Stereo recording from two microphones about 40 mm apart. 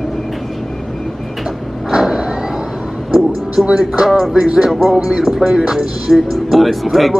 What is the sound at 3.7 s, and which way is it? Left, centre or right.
Speech, centre.